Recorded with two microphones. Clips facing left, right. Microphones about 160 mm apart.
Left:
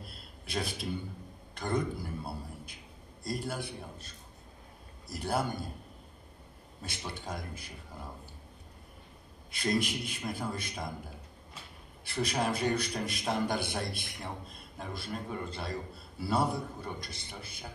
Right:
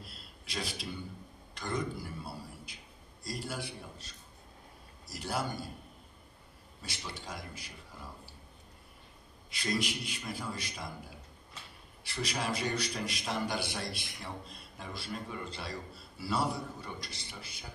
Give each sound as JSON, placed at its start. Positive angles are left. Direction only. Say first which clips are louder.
{"t": 0.0, "sound": "a sound", "louder": "left 3 dB", "side_deg": 55}
{"t": 1.5, "sound": "a man's voice", "louder": "left 3 dB", "side_deg": 55}
{"t": 7.1, "sound": "a man's voice", "louder": "left 4 dB", "side_deg": 55}
{"t": 9.5, "sound": "a man's voice", "louder": "left 3 dB", "side_deg": 55}
{"t": 12.0, "sound": "a man's voice", "louder": "left 5 dB", "side_deg": 55}